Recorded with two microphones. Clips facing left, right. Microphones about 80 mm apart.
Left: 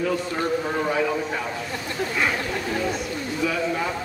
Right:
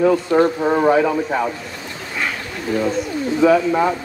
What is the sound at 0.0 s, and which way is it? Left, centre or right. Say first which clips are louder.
Speech: right 10 dB; right.